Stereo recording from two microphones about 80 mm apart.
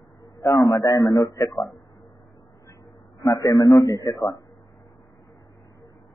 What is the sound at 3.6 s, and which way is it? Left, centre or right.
Speech, left.